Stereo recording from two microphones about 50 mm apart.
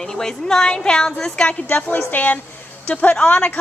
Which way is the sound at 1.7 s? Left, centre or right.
Left.